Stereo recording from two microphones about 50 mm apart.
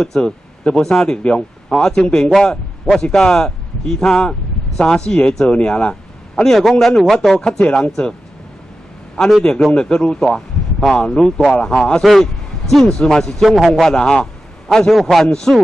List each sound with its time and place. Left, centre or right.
0.0 s a man's voice: centre
7.4 s speech: centre
9.2 s speech: centre
12.0 s speech: centre
13.5 s speech: centre
13.8 s a man's voice: centre